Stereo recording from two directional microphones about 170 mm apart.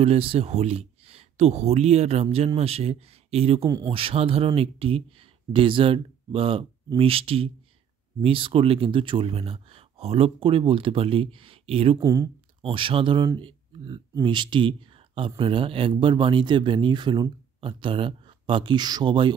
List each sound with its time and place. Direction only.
0.0 s speech: 35° right (ahead or behind)
3.6 s speech: 20° right (ahead or behind)
3.9 s speech: 35° right (ahead or behind)
12.0 s speech: 20° right (ahead or behind)
12.6 s speech: 30° right (ahead or behind)